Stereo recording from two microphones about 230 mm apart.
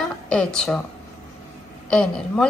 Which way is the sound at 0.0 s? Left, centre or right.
Centre.